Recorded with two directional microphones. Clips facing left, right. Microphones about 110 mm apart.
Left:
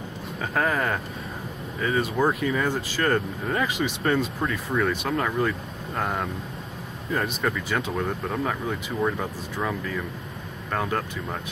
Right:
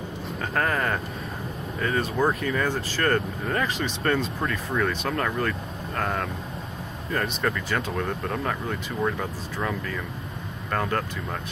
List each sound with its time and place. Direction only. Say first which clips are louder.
0.4 s speech: left 1 dB; 5° left (ahead or behind)